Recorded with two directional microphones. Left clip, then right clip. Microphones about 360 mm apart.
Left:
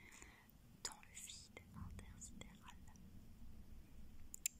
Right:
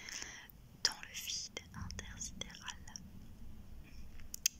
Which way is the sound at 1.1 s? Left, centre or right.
Left.